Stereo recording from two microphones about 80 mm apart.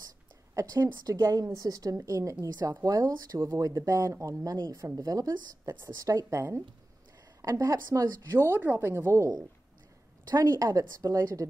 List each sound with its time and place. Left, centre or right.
0.6 s speech: right
7.4 s speech: right
8.4 s speech: right
10.4 s speech: right